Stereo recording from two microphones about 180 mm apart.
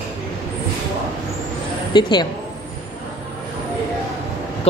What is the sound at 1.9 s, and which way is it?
Speech, 25° left (ahead or behind).